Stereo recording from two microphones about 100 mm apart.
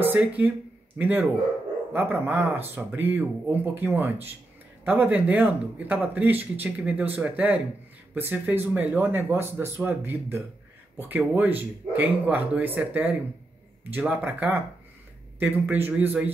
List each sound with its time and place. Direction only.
0.0 s speech: 20° right (ahead or behind)